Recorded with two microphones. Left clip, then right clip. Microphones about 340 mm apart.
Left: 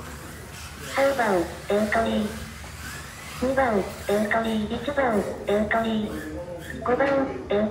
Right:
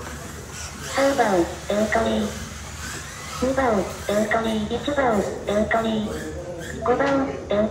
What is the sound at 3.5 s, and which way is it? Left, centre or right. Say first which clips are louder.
A woman's voice: right 1 dB; centre.